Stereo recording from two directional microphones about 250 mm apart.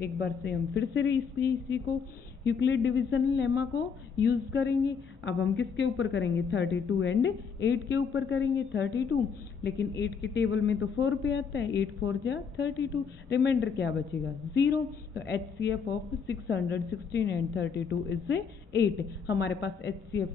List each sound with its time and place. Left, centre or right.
0.0 s a woman's voice: left
2.4 s a woman's voice: left